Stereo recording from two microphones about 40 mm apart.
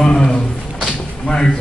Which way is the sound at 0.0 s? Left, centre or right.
Centre.